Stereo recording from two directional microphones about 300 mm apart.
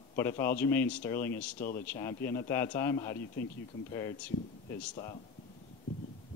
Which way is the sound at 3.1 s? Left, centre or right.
Left.